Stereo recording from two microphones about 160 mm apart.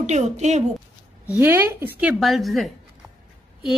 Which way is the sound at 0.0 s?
45° right (ahead or behind).